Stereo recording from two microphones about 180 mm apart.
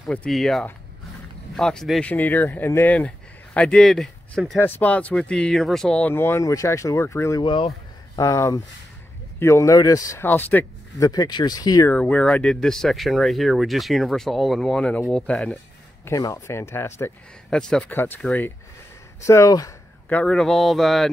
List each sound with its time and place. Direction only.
0.0 s speech: 5° left (ahead or behind)
3.5 s speech: centre (ahead or behind)
4.6 s speech: 10° left (ahead or behind)
11.1 s speech: 20° left (ahead or behind)
11.9 s speech: 5° left (ahead or behind)
16.1 s speech: 20° left (ahead or behind)
17.5 s speech: 5° left (ahead or behind)